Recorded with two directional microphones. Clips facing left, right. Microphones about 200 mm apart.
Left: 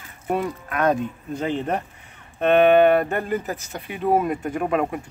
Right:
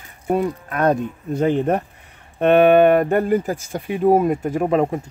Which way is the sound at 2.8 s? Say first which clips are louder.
Right 3 dB; 50° right (ahead or behind).